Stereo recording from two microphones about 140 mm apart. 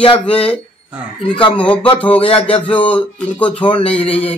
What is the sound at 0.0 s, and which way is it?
Speech, 40° left (ahead or behind).